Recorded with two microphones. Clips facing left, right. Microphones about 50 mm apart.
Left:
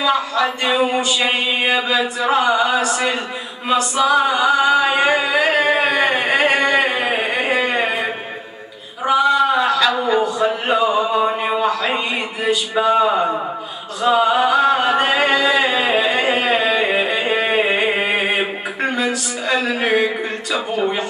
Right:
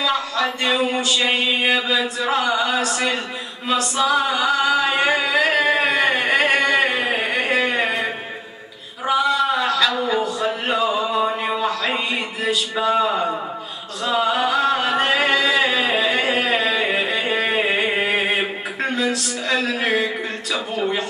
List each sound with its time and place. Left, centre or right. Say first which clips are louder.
0.0 s chant: left 4 dB; centre
3.6 s singing: left 3 dB; centre
9.0 s a sound: left 4 dB; centre
12.7 s chant: left 5 dB; centre
20.5 s a man's voice: left 3 dB; centre